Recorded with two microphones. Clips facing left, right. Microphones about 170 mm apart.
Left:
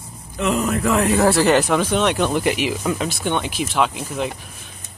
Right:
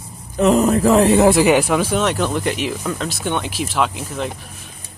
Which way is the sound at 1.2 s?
15° right (ahead or behind).